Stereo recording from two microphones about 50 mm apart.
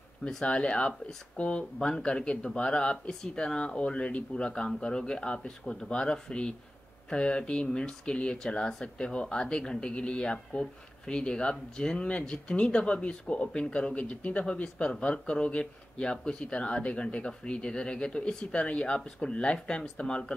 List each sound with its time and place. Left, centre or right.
0.3 s speech: centre